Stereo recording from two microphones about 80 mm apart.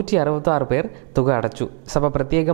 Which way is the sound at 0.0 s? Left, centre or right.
Centre.